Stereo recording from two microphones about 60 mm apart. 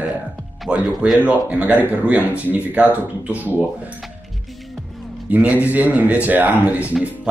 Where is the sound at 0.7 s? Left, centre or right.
Centre.